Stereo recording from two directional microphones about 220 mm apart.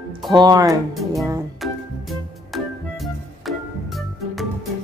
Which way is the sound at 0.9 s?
Centre (ahead or behind).